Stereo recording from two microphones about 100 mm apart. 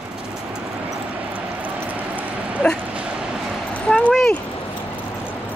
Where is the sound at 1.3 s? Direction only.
15° right (ahead or behind).